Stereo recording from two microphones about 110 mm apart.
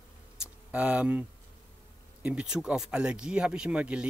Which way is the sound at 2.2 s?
10° right (ahead or behind).